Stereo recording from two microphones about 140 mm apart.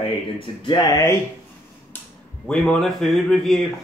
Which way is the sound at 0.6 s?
25° left (ahead or behind).